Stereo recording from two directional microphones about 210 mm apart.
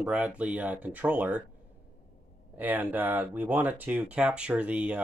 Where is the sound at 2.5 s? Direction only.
10° right (ahead or behind).